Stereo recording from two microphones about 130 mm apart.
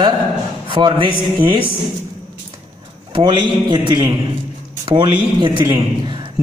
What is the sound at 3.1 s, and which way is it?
A man's voice, 40° right (ahead or behind).